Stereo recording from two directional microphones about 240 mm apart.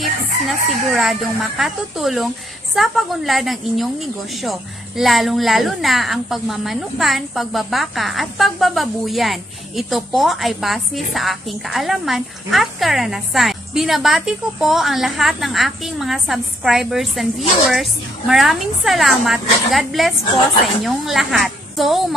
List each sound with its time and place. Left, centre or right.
0.0 s chicken: centre
1.6 s a woman's voice: centre